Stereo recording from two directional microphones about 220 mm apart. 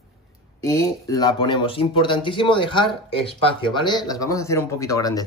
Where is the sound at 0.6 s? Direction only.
15° left (ahead or behind).